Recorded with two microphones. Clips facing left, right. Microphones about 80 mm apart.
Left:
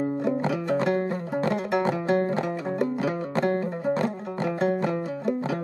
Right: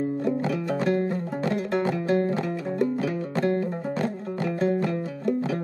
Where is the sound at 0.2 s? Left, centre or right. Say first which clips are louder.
Even; left.